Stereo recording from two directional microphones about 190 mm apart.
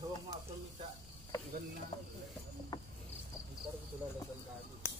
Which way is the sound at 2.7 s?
20° left (ahead or behind).